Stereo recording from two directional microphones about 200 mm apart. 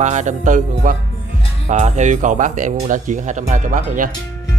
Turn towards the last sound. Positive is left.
turn(degrees=-40)  # may be behind; listen again after turning